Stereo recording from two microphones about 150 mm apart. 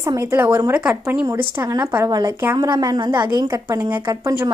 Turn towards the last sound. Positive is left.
turn(degrees=-20)  # may be behind; listen again after turning